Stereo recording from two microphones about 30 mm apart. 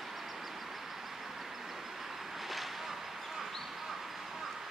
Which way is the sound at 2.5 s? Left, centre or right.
Centre.